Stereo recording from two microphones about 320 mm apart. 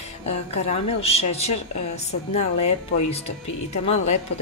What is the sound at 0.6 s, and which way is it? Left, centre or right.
Speech, centre.